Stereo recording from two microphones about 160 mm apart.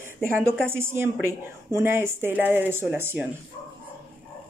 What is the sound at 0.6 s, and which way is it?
A woman's voice, 15° right (ahead or behind).